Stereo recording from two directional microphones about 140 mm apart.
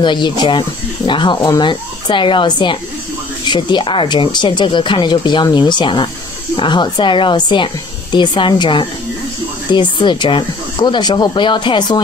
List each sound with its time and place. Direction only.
0.0 s speech: 35° left (ahead or behind)